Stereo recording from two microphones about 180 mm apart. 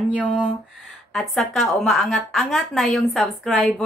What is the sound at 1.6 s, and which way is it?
Speech, 5° left (ahead or behind).